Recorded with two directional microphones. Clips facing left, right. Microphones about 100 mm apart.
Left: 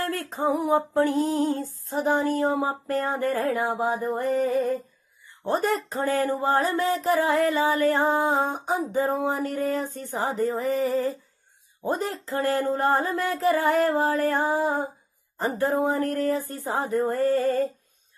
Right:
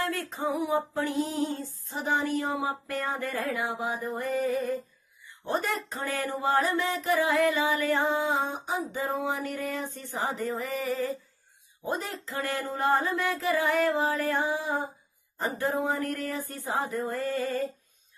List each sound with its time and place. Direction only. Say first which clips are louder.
0.0 s speech: left 4 dB; 40° left (ahead or behind)